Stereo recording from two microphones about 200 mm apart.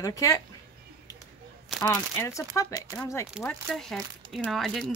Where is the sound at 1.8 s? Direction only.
15° left (ahead or behind).